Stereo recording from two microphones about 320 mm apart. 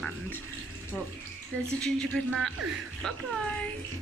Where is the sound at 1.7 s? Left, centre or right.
Centre.